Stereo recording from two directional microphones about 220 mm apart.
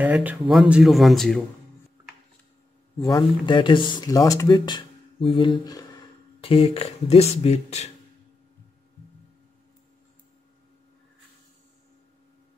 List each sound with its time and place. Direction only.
0.0 s speech: 5° right (ahead or behind)
3.0 s speech: 20° left (ahead or behind)